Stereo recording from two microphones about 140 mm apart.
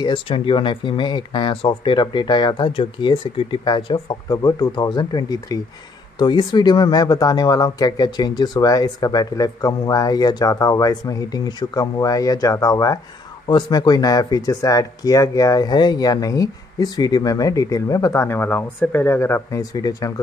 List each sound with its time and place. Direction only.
0.0 s speech: 35° left (ahead or behind)